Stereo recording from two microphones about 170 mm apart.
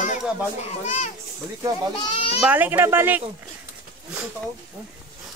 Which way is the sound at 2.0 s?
30° left (ahead or behind).